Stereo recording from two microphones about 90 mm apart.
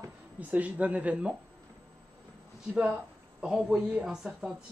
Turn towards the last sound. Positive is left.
turn(degrees=-5)  # may be behind; listen again after turning